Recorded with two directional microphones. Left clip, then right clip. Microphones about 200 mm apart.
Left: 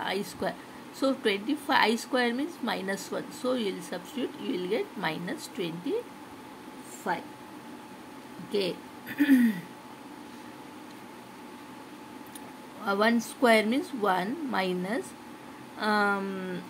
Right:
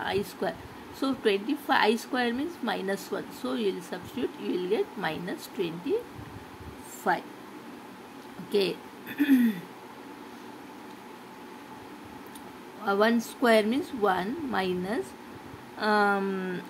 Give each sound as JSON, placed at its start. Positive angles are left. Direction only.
{"t": 0.0, "sound": "a woman's voice", "side_deg": -5}
{"t": 7.0, "sound": "speech", "side_deg": -20}
{"t": 8.5, "sound": "speech", "side_deg": -10}
{"t": 9.1, "sound": "a woman's voice", "side_deg": 0}
{"t": 12.8, "sound": "a woman's voice", "side_deg": 0}